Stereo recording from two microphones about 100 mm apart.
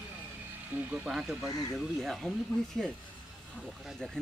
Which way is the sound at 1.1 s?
5° right (ahead or behind).